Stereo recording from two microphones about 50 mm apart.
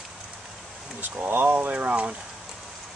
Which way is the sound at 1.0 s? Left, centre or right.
Right.